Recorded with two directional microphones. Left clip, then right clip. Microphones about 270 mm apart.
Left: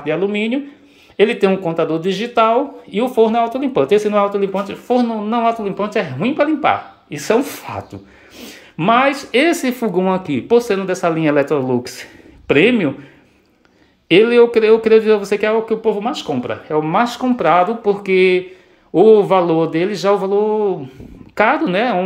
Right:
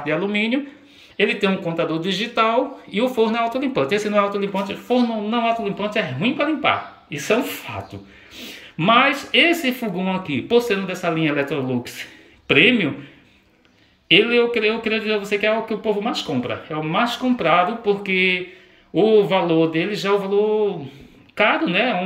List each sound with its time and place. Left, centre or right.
0.0 s speech: centre
14.0 s speech: centre